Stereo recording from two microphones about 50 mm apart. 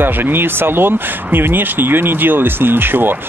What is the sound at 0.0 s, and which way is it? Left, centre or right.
Speech, right.